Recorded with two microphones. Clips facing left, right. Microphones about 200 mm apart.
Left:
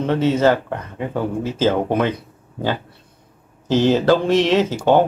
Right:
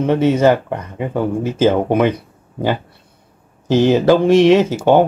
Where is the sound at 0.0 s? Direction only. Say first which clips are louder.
Right 3 dB; 15° right (ahead or behind).